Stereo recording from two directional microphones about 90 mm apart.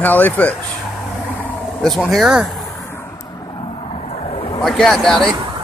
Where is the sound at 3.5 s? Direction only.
80° left.